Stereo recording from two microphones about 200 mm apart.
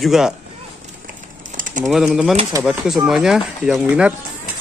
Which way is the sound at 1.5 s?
40° right (ahead or behind).